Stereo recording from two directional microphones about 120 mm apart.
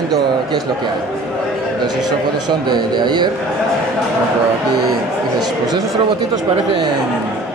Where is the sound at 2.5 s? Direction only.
40° right (ahead or behind).